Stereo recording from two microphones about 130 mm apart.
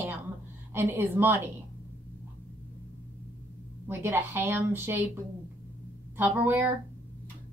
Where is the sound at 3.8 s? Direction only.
20° right (ahead or behind).